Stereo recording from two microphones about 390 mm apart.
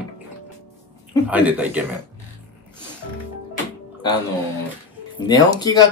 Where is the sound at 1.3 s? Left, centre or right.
Centre.